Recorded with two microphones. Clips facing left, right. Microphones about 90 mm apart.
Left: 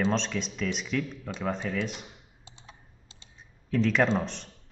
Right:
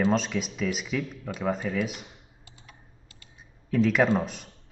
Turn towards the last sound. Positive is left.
turn(degrees=-5)  # may be behind; listen again after turning